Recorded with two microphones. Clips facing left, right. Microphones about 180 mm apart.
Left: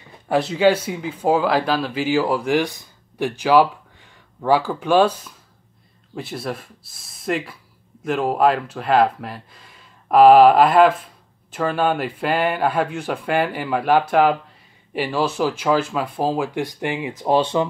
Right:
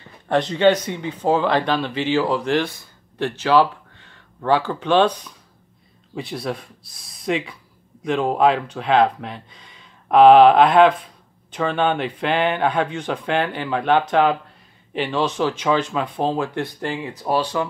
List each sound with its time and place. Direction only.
0.3 s speech: 5° left (ahead or behind); by 17.6 s 25° left (ahead or behind)